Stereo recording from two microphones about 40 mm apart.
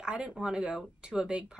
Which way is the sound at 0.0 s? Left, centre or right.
Right.